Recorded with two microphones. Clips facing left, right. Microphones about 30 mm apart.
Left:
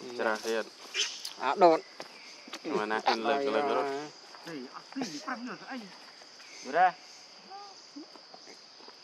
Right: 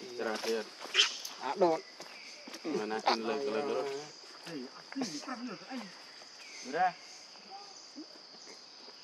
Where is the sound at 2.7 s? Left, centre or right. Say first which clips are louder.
Left 3 dB; left.